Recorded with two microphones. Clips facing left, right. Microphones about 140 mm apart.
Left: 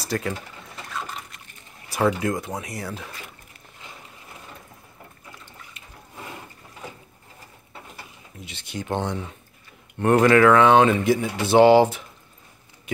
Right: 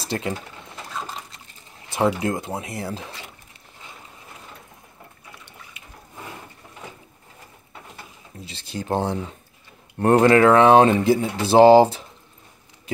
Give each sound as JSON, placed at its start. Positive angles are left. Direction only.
{"t": 0.0, "sound": "speech", "side_deg": -25}
{"t": 1.9, "sound": "speech", "side_deg": -25}
{"t": 8.5, "sound": "speech", "side_deg": -30}